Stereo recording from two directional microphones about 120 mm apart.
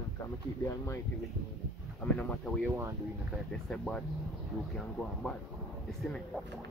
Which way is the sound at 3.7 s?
5° left (ahead or behind).